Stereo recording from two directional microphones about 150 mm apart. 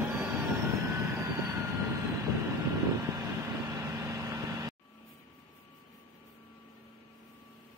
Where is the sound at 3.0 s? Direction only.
20° right (ahead or behind).